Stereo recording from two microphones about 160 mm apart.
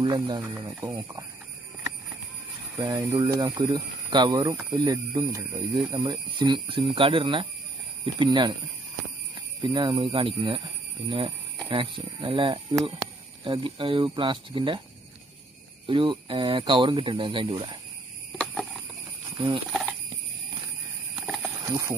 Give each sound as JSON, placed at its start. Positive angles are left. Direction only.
{"t": 0.0, "sound": "speech", "side_deg": -25}
{"t": 2.8, "sound": "speech", "side_deg": -20}
{"t": 9.6, "sound": "speech", "side_deg": -30}
{"t": 15.9, "sound": "speech", "side_deg": -30}
{"t": 18.4, "sound": "a sound", "side_deg": 5}
{"t": 19.3, "sound": "speech", "side_deg": -30}
{"t": 19.7, "sound": "a sound", "side_deg": 0}
{"t": 21.2, "sound": "horse", "side_deg": -5}
{"t": 21.6, "sound": "speech", "side_deg": -20}